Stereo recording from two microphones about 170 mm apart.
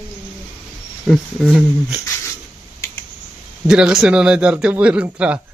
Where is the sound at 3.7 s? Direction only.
5° right (ahead or behind).